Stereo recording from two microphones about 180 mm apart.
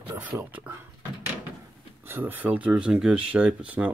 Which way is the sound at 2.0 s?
10° right (ahead or behind).